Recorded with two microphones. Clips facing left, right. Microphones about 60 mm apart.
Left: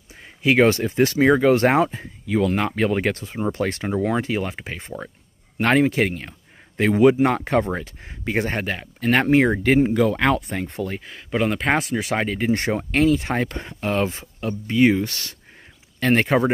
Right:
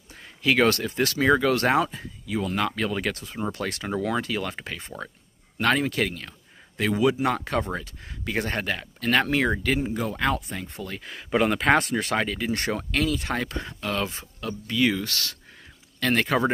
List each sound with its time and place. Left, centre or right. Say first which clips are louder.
0.1 s speech: left 4 dB; left
2.2 s speech: left 8 dB; left
2.5 s speech: left 5 dB; left
5.6 s speech: left 5 dB; left
9.7 s speech: left 9 dB; left
11.0 s speech: right 3 dB; centre
12.1 s speech: left 2 dB; centre
12.4 s speech: left 5 dB; left